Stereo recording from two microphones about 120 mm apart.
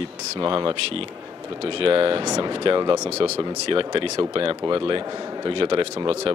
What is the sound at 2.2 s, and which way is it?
Speech, 30° right (ahead or behind).